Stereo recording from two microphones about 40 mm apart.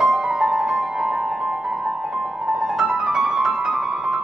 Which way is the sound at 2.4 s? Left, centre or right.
Centre.